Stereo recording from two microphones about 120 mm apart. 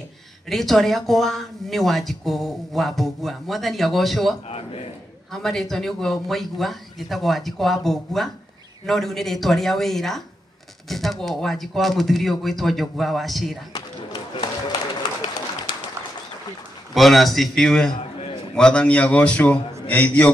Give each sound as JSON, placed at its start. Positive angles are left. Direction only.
{"t": 0.5, "sound": "speech", "side_deg": 0}
{"t": 4.5, "sound": "a man's voice", "side_deg": 55}
{"t": 5.3, "sound": "speech", "side_deg": 5}
{"t": 13.7, "sound": "run", "side_deg": 40}
{"t": 16.9, "sound": "speech", "side_deg": 0}
{"t": 17.9, "sound": "a sound", "side_deg": 45}
{"t": 18.5, "sound": "a man's voice", "side_deg": 10}